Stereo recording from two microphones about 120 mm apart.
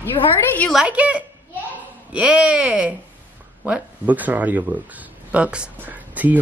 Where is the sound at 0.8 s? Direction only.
10° right (ahead or behind).